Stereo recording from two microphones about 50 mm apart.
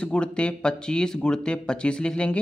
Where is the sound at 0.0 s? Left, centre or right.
Left.